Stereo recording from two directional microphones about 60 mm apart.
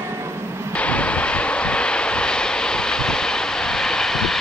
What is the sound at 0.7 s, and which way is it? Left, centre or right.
Vehicle, left.